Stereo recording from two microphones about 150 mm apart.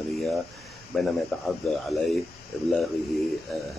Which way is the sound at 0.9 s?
Centre (ahead or behind).